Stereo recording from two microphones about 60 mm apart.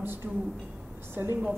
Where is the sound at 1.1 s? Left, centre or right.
Right.